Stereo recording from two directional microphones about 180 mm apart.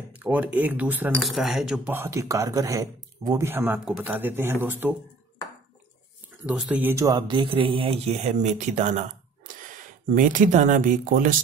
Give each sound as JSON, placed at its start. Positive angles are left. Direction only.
{"t": 0.1, "sound": "speech", "side_deg": -10}
{"t": 2.0, "sound": "speech", "side_deg": -15}
{"t": 6.4, "sound": "speech", "side_deg": -5}
{"t": 10.0, "sound": "speech", "side_deg": -45}